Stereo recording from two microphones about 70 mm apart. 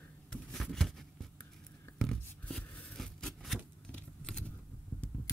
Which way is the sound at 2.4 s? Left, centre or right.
Centre.